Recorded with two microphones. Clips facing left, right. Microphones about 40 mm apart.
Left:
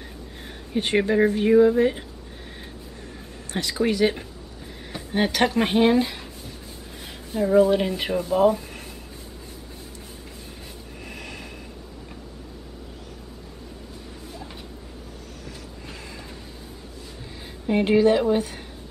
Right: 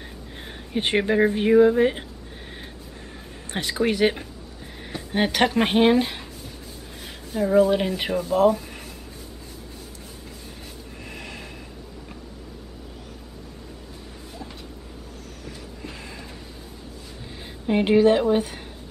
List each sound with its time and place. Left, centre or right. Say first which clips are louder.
0.4 s speech: even; right
3.5 s speech: left 1 dB; right
5.1 s speech: even; centre
7.3 s speech: left 1 dB; centre
11.1 s snort: even; centre
15.4 s a sound: right 3 dB; centre
17.6 s speech: right 1 dB; centre